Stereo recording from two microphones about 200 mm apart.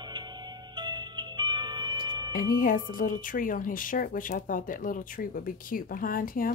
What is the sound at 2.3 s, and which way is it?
Speech, 45° left (ahead or behind).